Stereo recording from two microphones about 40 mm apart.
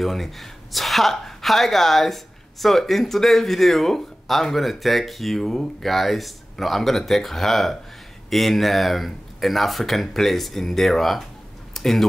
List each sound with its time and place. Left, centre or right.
0.0 s speech: centre